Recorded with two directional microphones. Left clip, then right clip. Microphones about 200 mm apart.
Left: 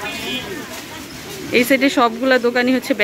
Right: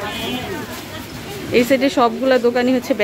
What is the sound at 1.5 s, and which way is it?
Speech, 10° left (ahead or behind).